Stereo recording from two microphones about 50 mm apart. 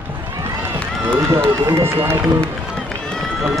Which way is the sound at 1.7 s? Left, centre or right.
Right.